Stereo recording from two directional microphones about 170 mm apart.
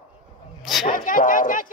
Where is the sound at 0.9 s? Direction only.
50° left (ahead or behind).